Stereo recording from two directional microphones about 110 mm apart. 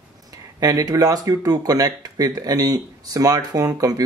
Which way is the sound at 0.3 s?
35° right (ahead or behind).